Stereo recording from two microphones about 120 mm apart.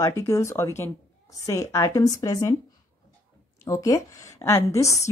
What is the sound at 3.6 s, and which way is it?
Speech, 30° left (ahead or behind).